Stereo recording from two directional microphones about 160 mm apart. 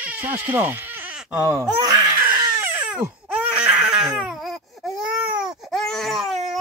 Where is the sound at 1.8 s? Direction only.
25° right (ahead or behind).